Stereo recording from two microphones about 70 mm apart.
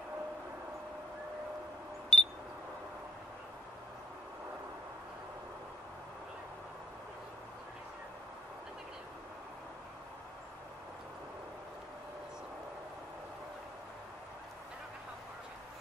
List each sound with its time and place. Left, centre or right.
2.1 s camera: centre